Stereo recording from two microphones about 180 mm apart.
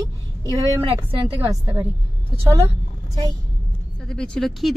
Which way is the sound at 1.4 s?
15° right (ahead or behind).